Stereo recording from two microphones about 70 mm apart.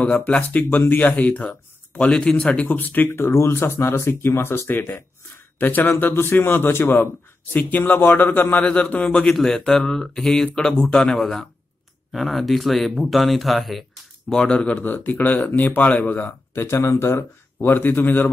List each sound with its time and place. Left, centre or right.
0.2 s speech: left
8.6 s speech: centre
9.1 s speech: centre
14.3 s speech: centre
16.6 s speech: left